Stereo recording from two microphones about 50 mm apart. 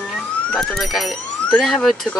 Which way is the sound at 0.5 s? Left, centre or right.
Centre.